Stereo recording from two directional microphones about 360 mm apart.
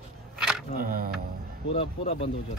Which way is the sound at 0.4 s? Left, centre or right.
Centre.